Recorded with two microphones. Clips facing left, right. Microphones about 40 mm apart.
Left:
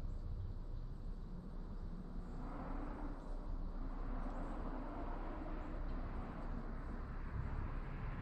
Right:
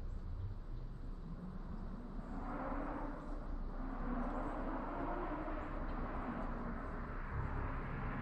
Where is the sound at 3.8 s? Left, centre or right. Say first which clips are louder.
Right 9 dB; right.